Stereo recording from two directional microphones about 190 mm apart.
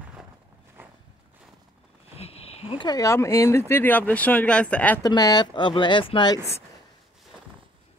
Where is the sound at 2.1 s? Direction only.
30° left (ahead or behind); by 5.1 s 10° left (ahead or behind).